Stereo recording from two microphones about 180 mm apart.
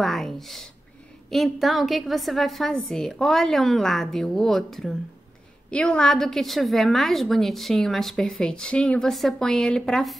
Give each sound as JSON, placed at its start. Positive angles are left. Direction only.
{"t": 0.0, "sound": "a woman's voice", "side_deg": 0}